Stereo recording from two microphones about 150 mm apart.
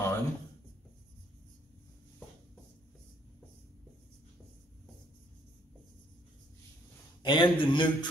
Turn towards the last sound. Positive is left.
turn(degrees=30)  # may be behind; listen again after turning